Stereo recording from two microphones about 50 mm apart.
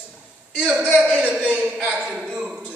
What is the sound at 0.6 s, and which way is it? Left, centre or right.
A man's voice, centre.